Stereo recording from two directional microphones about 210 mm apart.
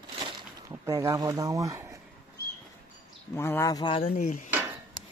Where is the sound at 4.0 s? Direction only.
35° left (ahead or behind).